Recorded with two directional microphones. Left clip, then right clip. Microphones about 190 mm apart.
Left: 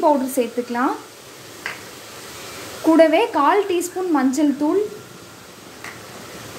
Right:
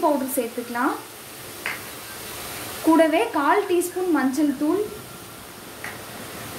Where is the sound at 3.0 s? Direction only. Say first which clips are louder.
Left 7 dB; 30° left (ahead or behind).